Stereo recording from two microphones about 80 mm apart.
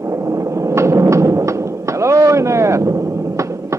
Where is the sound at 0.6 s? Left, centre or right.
Right.